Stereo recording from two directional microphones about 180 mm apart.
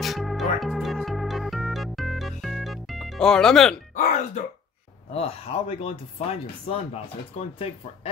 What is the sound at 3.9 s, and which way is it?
Speech, 45° left (ahead or behind).